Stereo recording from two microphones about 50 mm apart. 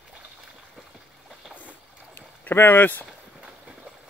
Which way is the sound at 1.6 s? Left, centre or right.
Left.